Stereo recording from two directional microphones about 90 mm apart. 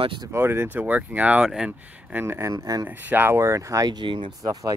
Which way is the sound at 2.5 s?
40° right (ahead or behind).